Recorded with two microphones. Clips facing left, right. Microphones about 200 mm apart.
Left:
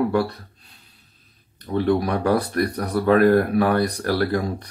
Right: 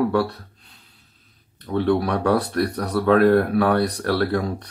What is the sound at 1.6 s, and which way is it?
Speech, 15° left (ahead or behind).